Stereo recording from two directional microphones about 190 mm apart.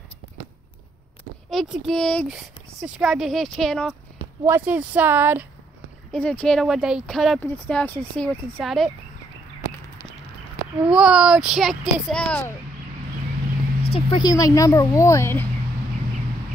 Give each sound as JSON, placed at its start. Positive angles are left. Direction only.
{"t": 1.5, "sound": "speech", "side_deg": 0}
{"t": 4.2, "sound": "speech", "side_deg": -10}
{"t": 6.1, "sound": "speech", "side_deg": 5}
{"t": 10.8, "sound": "speech", "side_deg": -5}
{"t": 13.8, "sound": "speech", "side_deg": 25}